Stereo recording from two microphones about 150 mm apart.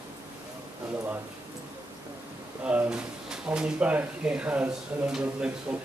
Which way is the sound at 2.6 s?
10° right (ahead or behind).